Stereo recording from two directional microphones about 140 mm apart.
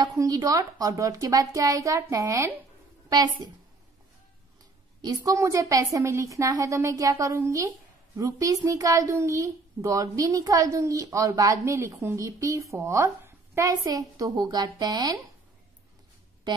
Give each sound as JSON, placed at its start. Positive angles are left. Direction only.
{"t": 0.0, "sound": "a child's voice", "side_deg": -30}
{"t": 5.0, "sound": "a child's voice", "side_deg": -25}